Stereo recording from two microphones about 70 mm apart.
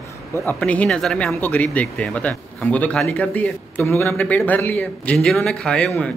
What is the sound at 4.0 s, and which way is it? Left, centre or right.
Speech, left.